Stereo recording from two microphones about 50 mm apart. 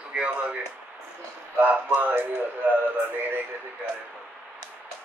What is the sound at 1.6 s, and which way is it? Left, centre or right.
Speech, right.